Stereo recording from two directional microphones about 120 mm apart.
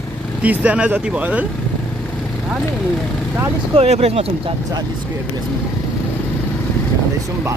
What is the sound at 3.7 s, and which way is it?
Speech, 55° right (ahead or behind).